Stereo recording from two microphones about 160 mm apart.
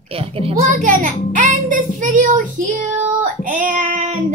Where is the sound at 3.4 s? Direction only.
55° right (ahead or behind).